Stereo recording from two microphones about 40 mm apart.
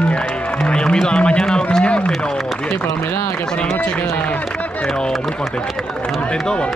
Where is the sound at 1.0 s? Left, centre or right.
Left.